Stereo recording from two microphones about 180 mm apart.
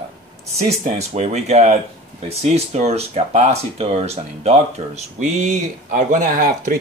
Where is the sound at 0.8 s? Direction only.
40° right (ahead or behind).